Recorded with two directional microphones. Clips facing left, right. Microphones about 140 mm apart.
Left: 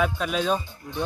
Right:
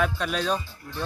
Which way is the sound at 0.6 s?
20° left (ahead or behind).